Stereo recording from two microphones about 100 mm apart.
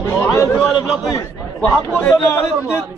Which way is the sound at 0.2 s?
30° left (ahead or behind).